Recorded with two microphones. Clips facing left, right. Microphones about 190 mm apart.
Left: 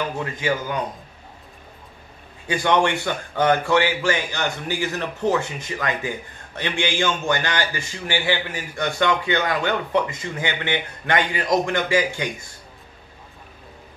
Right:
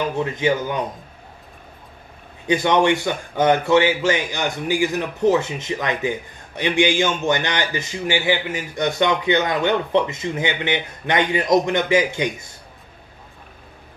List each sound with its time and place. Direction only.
0.2 s a man's voice: 20° right (ahead or behind)
2.4 s a man's voice: 20° right (ahead or behind)